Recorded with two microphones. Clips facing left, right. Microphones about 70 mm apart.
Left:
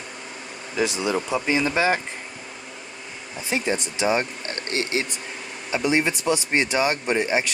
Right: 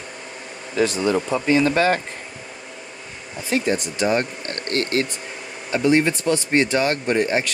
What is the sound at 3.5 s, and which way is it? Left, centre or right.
Speech, centre.